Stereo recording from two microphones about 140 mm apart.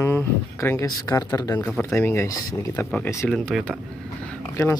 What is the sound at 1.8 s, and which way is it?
Speech, 15° left (ahead or behind).